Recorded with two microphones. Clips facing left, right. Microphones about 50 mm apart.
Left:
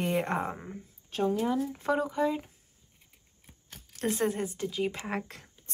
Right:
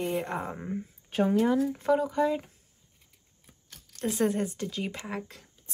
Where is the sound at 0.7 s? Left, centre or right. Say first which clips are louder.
Right 6 dB; centre.